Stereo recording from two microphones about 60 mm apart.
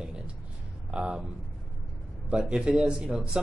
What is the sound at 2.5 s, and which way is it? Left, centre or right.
Speech, centre.